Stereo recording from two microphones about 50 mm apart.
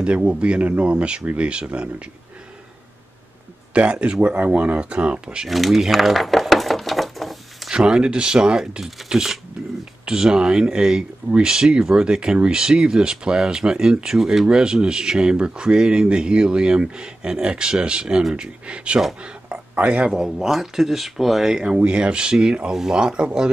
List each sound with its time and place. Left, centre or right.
0.0 s speech: right
3.7 s speech: right
5.5 s a sound: centre
7.7 s speech: centre
20.1 s speech: centre